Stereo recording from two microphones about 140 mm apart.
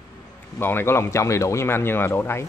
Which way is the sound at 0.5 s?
15° left (ahead or behind).